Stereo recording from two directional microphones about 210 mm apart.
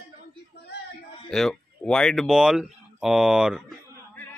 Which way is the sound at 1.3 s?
Centre (ahead or behind).